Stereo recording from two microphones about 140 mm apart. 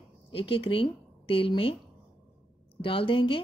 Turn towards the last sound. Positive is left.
turn(degrees=40)  # may be behind; listen again after turning